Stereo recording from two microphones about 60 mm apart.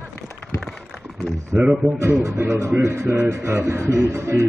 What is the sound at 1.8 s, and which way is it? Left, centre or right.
Speech, right.